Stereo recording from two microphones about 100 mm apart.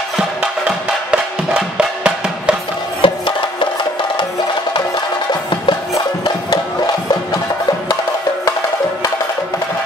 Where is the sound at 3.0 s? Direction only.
55° left (ahead or behind).